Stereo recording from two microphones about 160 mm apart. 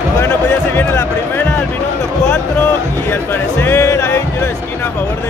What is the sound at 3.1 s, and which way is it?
Music, 15° left (ahead or behind).